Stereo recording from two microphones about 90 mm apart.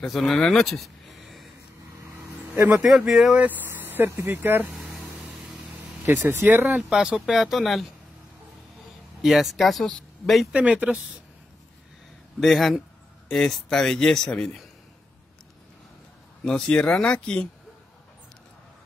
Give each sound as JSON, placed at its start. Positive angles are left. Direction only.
{"t": 0.0, "sound": "speech", "side_deg": 0}
{"t": 2.7, "sound": "speech", "side_deg": -10}
{"t": 3.3, "sound": "speech", "side_deg": -20}
{"t": 6.0, "sound": "speech", "side_deg": -25}
{"t": 6.9, "sound": "speech", "side_deg": -5}
{"t": 9.2, "sound": "speech", "side_deg": 0}
{"t": 10.5, "sound": "speech", "side_deg": -15}
{"t": 12.4, "sound": "speech", "side_deg": 0}
{"t": 16.4, "sound": "speech", "side_deg": 10}